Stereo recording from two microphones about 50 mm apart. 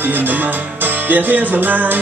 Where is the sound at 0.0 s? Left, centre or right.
Right.